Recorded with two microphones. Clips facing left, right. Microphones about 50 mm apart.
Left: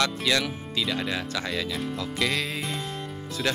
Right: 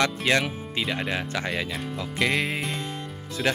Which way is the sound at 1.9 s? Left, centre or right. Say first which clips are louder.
Right 4 dB; right.